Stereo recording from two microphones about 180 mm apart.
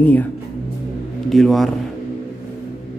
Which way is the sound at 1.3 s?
Centre (ahead or behind).